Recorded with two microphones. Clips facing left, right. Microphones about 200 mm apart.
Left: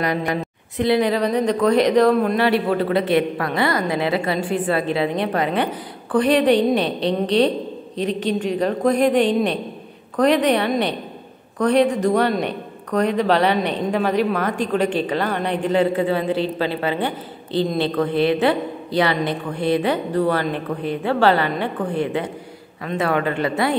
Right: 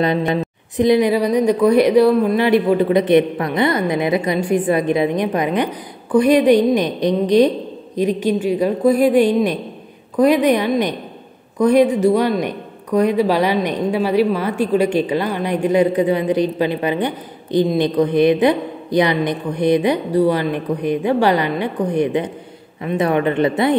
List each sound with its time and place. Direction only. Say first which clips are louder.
0.0 s speech: right 4 dB; 20° right (ahead or behind)